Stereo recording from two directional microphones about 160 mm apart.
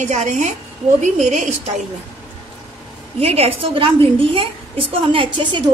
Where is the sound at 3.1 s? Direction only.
40° right (ahead or behind).